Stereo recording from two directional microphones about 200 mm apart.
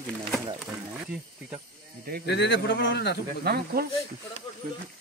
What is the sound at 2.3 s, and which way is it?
Speech, 60° left (ahead or behind).